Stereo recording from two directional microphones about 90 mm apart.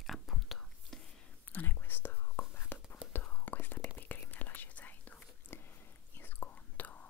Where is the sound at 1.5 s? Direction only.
20° left (ahead or behind).